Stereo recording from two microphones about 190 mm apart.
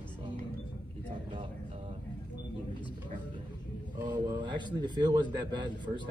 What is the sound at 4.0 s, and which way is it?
A man's voice, 25° right (ahead or behind).